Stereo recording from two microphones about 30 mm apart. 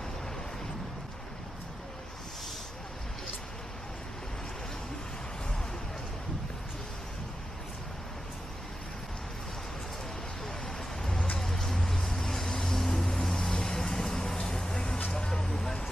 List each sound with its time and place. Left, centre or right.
11.3 s music: centre
12.4 s vehicle: centre